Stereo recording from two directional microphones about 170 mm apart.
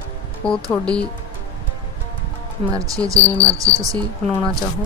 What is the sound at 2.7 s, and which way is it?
Speech, 20° right (ahead or behind).